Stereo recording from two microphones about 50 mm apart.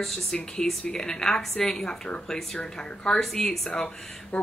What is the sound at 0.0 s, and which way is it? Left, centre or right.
Speech, centre.